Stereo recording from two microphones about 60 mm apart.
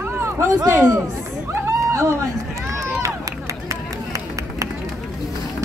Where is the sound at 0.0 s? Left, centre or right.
Right.